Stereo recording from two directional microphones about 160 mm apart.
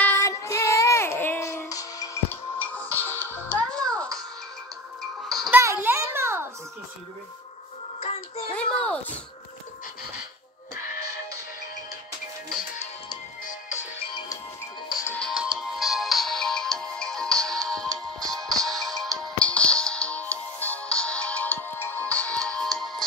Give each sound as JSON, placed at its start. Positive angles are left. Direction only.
{"t": 0.0, "sound": "child singing", "side_deg": 15}
{"t": 2.6, "sound": "music", "side_deg": 10}
{"t": 5.5, "sound": "a sound", "side_deg": -15}
{"t": 8.0, "sound": "child singing", "side_deg": 40}
{"t": 13.4, "sound": "music", "side_deg": 50}
{"t": 15.0, "sound": "music", "side_deg": 5}
{"t": 15.3, "sound": "music", "side_deg": -5}